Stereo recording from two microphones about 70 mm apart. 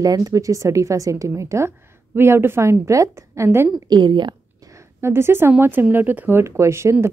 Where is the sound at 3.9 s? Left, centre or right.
Right.